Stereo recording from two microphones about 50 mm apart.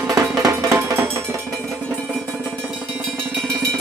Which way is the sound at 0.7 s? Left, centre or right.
Right.